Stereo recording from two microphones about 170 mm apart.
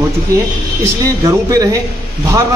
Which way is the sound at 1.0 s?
20° right (ahead or behind).